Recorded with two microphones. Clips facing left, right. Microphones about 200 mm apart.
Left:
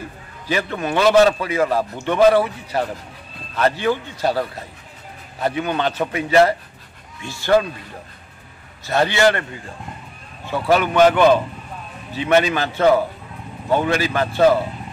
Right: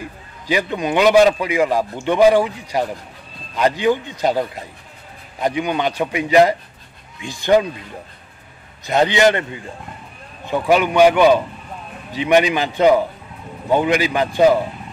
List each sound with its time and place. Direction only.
0.5 s a man's voice: 15° right (ahead or behind)
8.8 s a man's voice: 20° right (ahead or behind)